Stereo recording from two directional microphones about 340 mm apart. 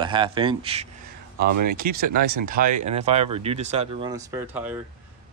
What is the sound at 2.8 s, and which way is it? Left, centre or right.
Speech, centre.